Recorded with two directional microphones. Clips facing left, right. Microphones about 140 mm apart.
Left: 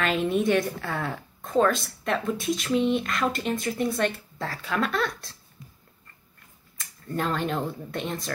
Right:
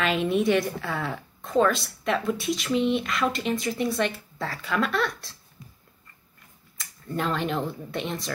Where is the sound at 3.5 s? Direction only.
50° left (ahead or behind).